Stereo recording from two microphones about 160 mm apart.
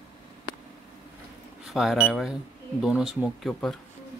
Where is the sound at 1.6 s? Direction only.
Centre (ahead or behind).